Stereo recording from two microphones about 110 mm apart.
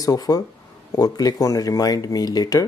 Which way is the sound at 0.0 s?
35° left (ahead or behind).